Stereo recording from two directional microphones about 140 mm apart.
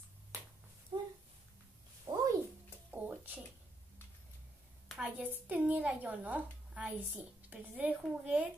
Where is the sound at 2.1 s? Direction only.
40° right (ahead or behind).